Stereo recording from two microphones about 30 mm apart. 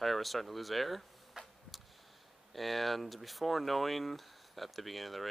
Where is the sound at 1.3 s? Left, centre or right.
Centre.